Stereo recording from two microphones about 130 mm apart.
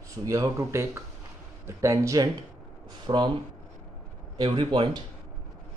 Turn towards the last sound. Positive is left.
turn(degrees=-40)  # may be behind; listen again after turning